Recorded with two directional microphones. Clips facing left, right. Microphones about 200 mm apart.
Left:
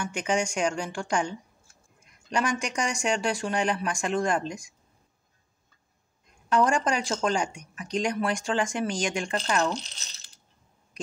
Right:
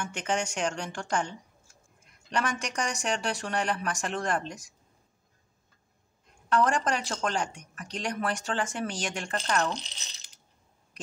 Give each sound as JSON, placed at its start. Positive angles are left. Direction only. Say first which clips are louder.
{"t": 0.0, "sound": "speech", "louder": "left 3 dB", "side_deg": 10}
{"t": 2.3, "sound": "speech", "louder": "left 3 dB", "side_deg": 10}
{"t": 6.5, "sound": "speech", "louder": "left 2 dB", "side_deg": 15}
{"t": 9.9, "sound": "coin", "louder": "even", "side_deg": -15}